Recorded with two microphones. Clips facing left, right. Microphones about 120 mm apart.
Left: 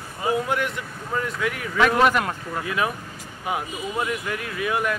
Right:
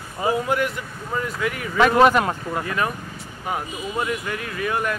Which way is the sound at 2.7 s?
5° left (ahead or behind).